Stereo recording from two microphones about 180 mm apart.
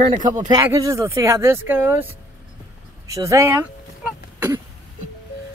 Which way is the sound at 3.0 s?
15° right (ahead or behind).